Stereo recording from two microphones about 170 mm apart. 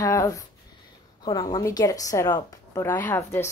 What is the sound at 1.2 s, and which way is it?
A woman's voice, 25° left (ahead or behind).